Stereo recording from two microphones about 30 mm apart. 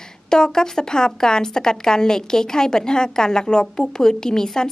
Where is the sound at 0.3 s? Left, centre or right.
Left.